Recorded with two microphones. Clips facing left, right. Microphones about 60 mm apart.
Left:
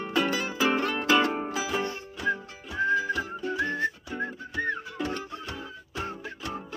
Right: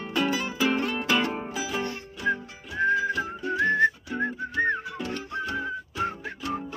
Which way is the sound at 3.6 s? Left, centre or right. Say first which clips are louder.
Right 11 dB; right.